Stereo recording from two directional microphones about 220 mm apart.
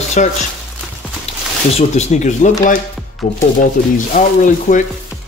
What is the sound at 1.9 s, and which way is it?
Speech, 30° left (ahead or behind).